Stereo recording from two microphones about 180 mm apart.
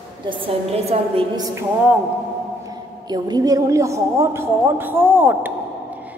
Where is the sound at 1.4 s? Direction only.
10° right (ahead or behind).